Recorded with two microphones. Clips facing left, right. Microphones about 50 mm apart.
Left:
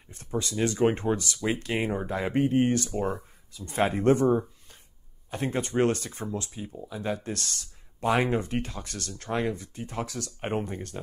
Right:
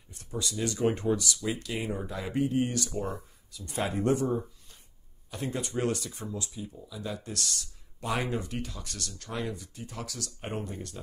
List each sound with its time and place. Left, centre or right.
0.1 s speech: left